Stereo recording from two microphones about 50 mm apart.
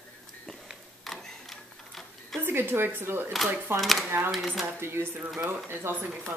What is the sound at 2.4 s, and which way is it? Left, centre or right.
Speech, right.